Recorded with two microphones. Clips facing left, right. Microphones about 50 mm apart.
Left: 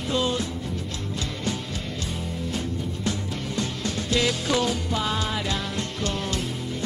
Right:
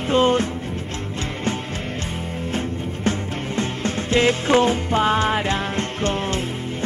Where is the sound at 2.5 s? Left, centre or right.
Right.